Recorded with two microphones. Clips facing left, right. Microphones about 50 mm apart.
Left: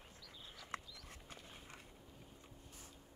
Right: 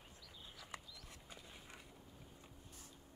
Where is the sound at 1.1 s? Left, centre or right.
Left.